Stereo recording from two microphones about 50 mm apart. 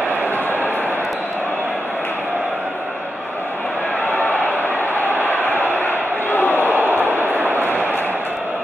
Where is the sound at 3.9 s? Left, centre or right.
Left.